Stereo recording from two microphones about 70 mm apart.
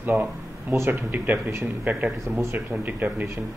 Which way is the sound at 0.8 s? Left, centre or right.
Right.